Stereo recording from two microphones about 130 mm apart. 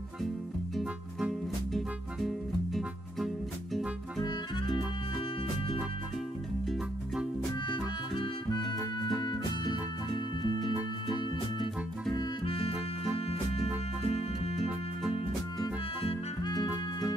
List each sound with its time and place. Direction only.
0.7 s music: centre (ahead or behind)
4.2 s music: 35° left (ahead or behind)
8.1 s harmonica: 40° left (ahead or behind)
9.2 s music: 35° left (ahead or behind)
10.7 s music: 5° right (ahead or behind)
12.2 s music: 45° left (ahead or behind)
15.6 s music: 35° left (ahead or behind)